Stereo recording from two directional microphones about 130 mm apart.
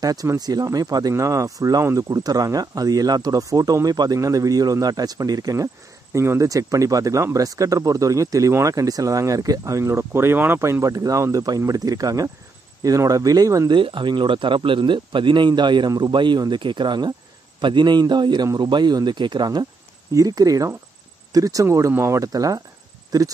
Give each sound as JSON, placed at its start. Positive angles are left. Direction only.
{"t": 0.0, "sound": "speech", "side_deg": -30}
{"t": 13.7, "sound": "a man's voice", "side_deg": -40}